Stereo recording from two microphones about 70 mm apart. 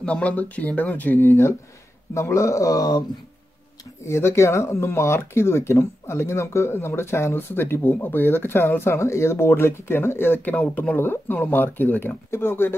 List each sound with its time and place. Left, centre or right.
0.0 s speech: centre; by 1.5 s left
2.1 s a man's voice: left
4.0 s speech: left